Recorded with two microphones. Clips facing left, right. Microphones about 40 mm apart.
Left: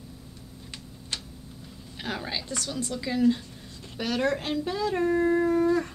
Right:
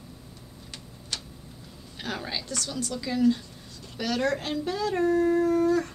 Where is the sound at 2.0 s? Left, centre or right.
Centre.